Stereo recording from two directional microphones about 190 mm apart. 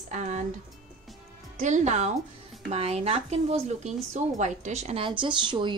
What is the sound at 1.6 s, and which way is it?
A woman's voice, 40° right (ahead or behind).